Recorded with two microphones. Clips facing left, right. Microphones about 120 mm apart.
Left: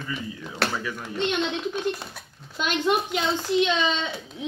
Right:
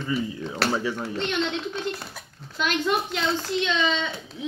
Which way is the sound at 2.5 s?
20° left (ahead or behind).